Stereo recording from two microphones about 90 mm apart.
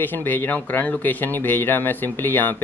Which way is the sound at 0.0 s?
20° left (ahead or behind).